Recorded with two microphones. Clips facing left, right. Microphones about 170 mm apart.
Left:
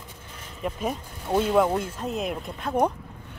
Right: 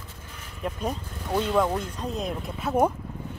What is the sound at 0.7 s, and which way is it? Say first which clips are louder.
Speech: left 1 dB; 5° left (ahead or behind).